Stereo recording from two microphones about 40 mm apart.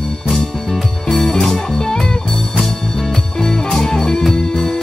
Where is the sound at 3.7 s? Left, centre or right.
Centre.